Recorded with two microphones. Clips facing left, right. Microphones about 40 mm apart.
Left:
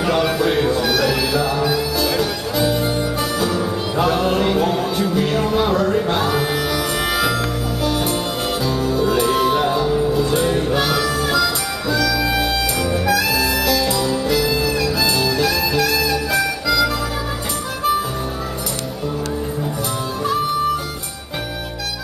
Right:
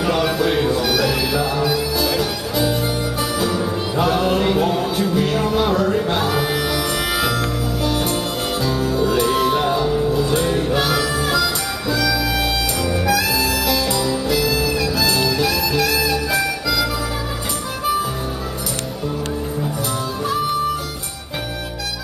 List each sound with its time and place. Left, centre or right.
0.0 s music: centre